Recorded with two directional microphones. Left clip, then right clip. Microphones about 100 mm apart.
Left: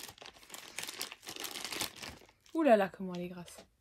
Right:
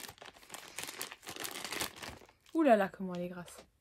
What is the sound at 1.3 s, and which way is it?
Crumpling, 20° right (ahead or behind).